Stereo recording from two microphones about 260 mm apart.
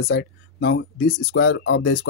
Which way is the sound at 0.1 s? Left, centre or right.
Left.